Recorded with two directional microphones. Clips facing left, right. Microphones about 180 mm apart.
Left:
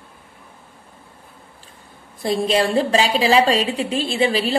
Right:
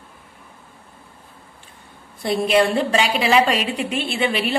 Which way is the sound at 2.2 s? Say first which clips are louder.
Right 1 dB; 30° left (ahead or behind).